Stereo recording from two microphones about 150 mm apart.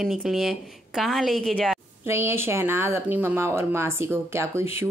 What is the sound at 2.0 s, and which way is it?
Speech, 15° right (ahead or behind).